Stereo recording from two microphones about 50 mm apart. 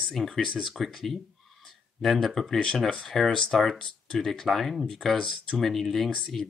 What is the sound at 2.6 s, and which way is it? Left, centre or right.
Speech, centre.